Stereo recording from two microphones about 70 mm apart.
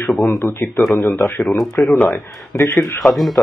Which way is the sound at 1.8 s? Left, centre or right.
Left.